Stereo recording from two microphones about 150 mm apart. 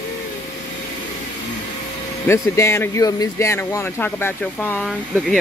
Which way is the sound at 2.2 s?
20° left (ahead or behind).